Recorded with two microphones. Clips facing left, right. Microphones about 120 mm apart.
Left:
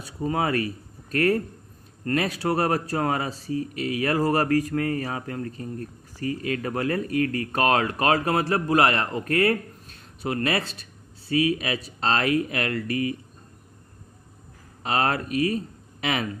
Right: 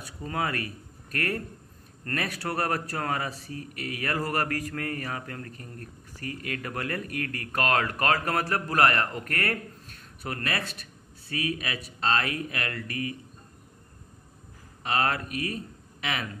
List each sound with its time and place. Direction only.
0.0 s speech: 25° left (ahead or behind)
12.8 s speech: 35° right (ahead or behind)
14.8 s speech: 30° left (ahead or behind)